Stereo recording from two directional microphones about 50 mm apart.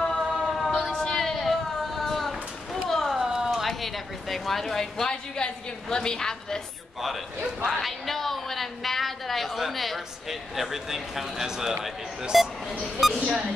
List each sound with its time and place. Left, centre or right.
0.0 s music: centre
0.6 s a sound: centre
3.2 s a sound: centre
3.6 s a woman's voice: centre
7.6 s a woman's voice: centre
13.2 s speech: centre